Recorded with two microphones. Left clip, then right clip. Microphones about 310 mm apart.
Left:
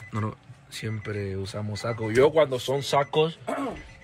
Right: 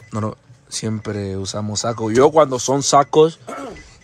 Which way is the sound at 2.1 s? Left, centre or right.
Right.